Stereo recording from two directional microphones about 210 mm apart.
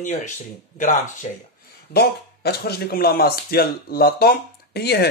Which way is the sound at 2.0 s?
50° left (ahead or behind).